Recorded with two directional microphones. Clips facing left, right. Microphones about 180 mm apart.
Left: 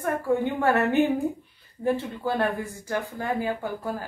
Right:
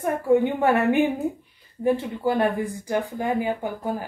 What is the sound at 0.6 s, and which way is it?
Speech, 15° right (ahead or behind).